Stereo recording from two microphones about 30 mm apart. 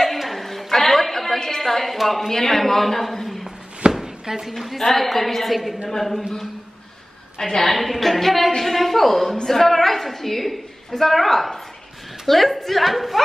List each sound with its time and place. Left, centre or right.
0.0 s a sound: centre
2.0 s a woman's voice: centre
4.0 s a sound: centre
4.5 s a woman's voice: centre
7.3 s speech: centre
7.7 s a woman's voice: centre